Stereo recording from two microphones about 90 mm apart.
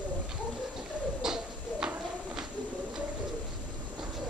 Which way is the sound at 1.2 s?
5° right (ahead or behind).